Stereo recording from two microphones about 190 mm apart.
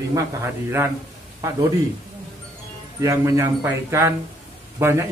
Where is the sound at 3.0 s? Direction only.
15° right (ahead or behind).